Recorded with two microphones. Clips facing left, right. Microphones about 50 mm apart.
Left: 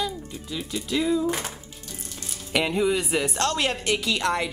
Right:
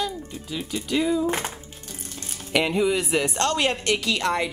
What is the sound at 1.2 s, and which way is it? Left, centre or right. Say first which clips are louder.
Speech: right 2 dB; right.